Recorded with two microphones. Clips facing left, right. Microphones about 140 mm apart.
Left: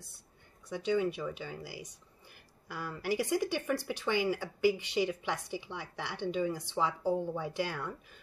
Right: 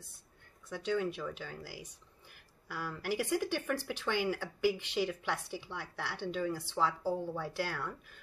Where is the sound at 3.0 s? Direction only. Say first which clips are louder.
Left 2 dB; 10° left (ahead or behind).